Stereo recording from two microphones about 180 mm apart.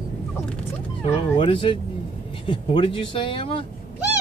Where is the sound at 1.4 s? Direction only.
30° left (ahead or behind).